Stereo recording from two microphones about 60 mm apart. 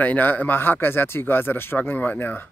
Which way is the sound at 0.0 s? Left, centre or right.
Left.